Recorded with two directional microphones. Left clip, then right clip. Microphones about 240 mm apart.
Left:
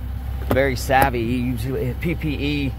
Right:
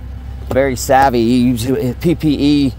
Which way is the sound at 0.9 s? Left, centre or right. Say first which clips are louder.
Right 10 dB; right.